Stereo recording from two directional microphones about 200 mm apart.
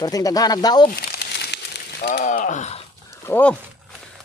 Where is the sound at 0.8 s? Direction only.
50° left (ahead or behind).